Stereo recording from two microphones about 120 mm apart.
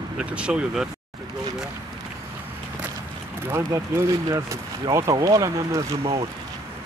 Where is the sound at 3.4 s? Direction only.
20° right (ahead or behind).